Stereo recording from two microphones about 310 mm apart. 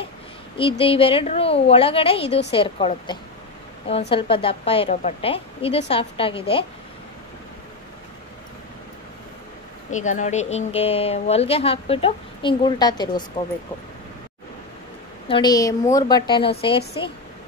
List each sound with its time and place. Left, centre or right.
0.6 s a woman's voice: centre
9.8 s a woman's voice: left
15.2 s a woman's voice: centre